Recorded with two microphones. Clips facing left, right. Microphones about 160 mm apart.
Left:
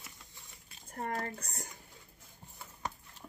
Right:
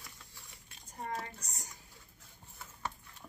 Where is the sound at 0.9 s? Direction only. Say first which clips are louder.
Left 3 dB; 60° left (ahead or behind).